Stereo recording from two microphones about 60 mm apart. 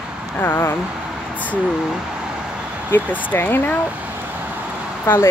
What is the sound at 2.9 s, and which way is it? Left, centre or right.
Speech, left.